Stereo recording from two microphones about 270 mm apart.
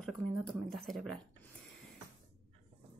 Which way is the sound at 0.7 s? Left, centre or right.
Centre.